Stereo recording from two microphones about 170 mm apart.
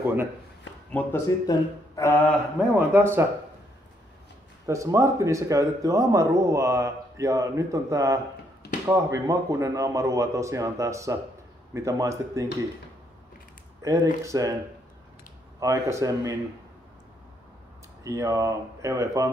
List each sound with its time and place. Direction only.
0.0 s a sound: 10° right (ahead or behind)
0.9 s mantra: 15° left (ahead or behind)
2.9 s speech: 15° right (ahead or behind)
4.6 s speech: 15° right (ahead or behind)
13.8 s speech: 20° right (ahead or behind)
15.6 s speech: 20° right (ahead or behind)
18.0 s speech: 20° right (ahead or behind)